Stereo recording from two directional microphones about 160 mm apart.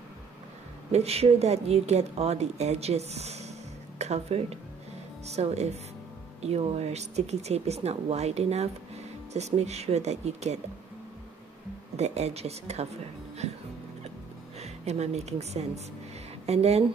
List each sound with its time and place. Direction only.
0.9 s speech: 40° right (ahead or behind)
12.0 s speech: 40° right (ahead or behind)
14.6 s speech: 45° right (ahead or behind)